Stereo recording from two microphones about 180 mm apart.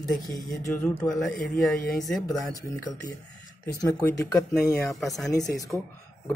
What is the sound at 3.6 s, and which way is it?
Speech, 20° left (ahead or behind).